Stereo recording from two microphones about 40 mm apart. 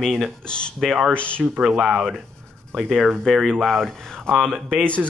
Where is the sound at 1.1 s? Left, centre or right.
Left.